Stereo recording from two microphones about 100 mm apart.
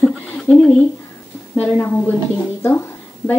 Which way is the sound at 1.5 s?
20° left (ahead or behind).